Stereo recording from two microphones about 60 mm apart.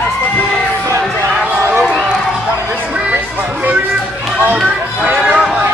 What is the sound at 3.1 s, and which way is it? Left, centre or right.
Music, right.